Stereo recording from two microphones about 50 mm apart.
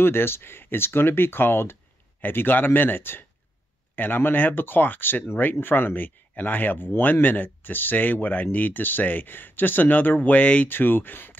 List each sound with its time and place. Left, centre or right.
0.0 s speech: left
10.7 s speech: left